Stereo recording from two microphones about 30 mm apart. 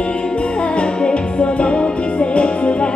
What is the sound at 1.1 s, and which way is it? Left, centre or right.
Music, left.